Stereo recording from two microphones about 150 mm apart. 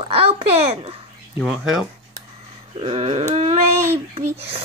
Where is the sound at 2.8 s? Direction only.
40° right (ahead or behind).